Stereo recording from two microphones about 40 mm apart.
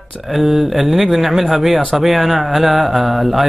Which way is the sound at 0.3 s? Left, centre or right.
Centre.